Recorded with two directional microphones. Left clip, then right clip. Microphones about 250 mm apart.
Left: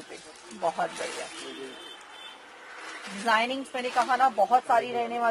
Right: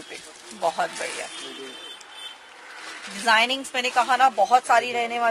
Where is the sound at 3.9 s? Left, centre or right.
Centre.